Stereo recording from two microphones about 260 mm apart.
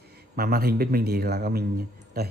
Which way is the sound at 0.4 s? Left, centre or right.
Right.